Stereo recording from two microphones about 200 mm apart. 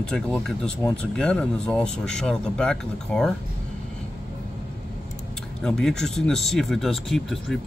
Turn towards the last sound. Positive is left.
turn(degrees=0)  # may be behind; listen again after turning